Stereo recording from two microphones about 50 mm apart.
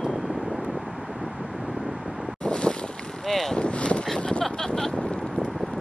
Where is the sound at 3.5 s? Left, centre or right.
Left.